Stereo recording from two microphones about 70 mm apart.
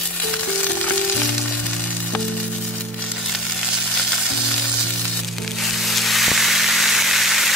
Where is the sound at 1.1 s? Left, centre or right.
Centre.